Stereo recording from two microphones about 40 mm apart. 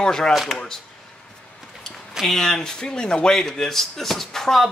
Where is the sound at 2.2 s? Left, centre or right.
Centre.